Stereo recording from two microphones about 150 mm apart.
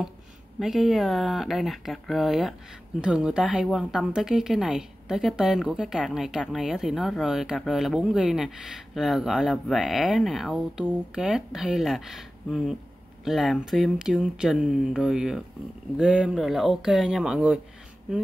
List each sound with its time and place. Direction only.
0.6 s speech: centre (ahead or behind)